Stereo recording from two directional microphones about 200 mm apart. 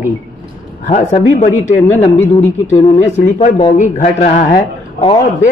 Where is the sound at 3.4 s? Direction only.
35° left (ahead or behind).